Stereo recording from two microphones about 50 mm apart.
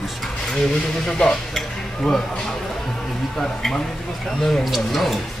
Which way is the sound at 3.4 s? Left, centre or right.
Centre.